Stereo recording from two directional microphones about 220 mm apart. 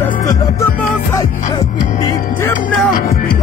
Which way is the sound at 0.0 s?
15° left (ahead or behind).